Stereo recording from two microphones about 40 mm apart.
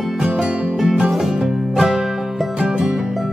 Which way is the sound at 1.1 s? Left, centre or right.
Centre.